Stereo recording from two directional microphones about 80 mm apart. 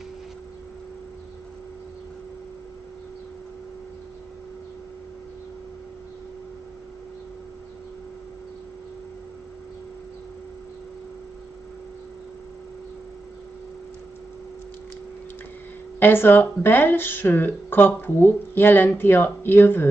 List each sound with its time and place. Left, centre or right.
16.0 s speech: left